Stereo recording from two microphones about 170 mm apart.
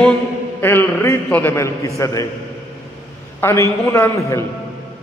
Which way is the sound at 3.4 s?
15° left (ahead or behind).